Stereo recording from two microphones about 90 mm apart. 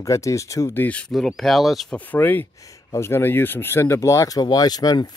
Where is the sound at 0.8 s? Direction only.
15° left (ahead or behind).